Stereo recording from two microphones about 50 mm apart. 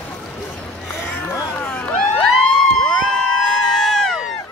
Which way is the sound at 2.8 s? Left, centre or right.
Centre.